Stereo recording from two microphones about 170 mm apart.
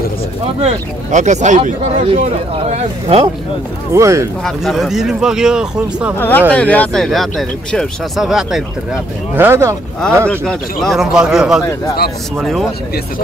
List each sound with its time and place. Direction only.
0.6 s speech: 40° right (ahead or behind)
3.9 s speech: 15° right (ahead or behind)
4.5 s speech: centre (ahead or behind)
6.1 s speech: 10° left (ahead or behind); by 9.8 s 15° right (ahead or behind)
10.2 s speech: 5° left (ahead or behind)